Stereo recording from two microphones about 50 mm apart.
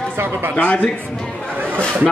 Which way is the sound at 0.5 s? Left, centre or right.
Left.